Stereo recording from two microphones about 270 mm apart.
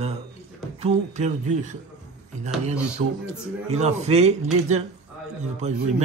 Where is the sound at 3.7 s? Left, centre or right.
Right.